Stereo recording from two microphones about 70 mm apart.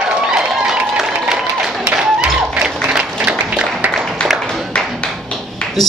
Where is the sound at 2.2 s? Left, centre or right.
Centre.